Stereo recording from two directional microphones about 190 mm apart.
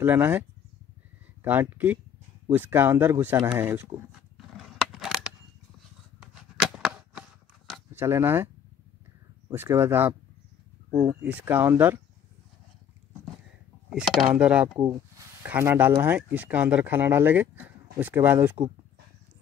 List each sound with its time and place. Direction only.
0.0 s speech: 10° right (ahead or behind)
4.6 s a sound: centre (ahead or behind)
8.0 s speech: 15° right (ahead or behind)
9.5 s speech: 15° right (ahead or behind)
13.8 s speech: centre (ahead or behind)